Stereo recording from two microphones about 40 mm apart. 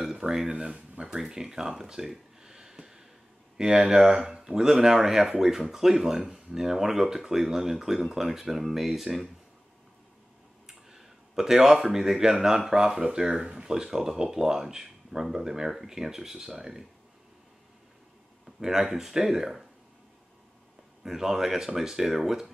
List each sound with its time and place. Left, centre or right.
0.0 s speech: centre
10.7 s speech: centre
18.4 s speech: centre
21.0 s speech: centre